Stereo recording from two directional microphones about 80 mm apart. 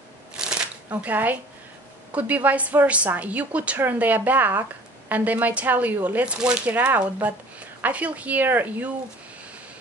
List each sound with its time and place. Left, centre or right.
0.4 s shuffling cards: centre
0.8 s a woman's voice: right